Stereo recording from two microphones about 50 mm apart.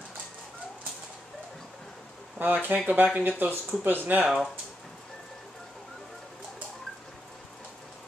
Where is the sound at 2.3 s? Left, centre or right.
Right.